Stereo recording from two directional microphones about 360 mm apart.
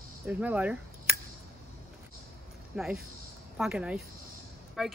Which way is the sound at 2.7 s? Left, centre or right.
Centre.